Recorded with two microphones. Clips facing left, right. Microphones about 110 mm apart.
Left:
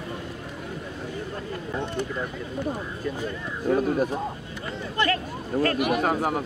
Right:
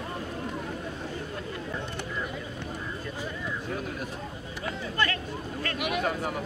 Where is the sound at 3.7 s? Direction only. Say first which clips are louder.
Left 17 dB; 40° left (ahead or behind).